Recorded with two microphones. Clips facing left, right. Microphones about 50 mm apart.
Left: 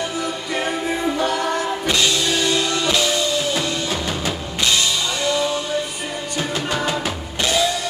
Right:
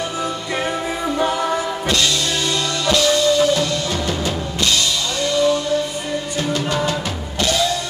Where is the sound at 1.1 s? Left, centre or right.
Centre.